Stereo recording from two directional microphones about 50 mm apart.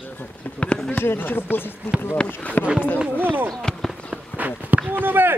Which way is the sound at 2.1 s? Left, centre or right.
Left.